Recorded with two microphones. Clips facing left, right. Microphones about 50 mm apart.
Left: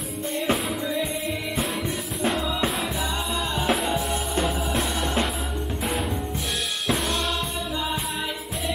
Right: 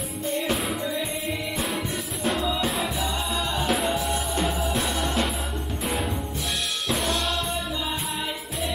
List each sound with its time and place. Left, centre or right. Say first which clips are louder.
0.3 s music: left 1 dB; centre
2.2 s music: left 1 dB; centre